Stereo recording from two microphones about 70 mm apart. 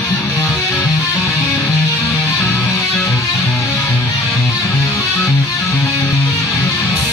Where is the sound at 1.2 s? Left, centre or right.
Left.